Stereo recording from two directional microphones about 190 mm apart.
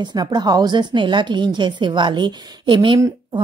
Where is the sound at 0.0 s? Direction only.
20° right (ahead or behind).